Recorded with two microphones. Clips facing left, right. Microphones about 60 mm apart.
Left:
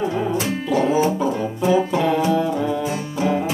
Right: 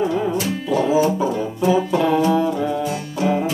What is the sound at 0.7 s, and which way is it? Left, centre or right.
Music, centre.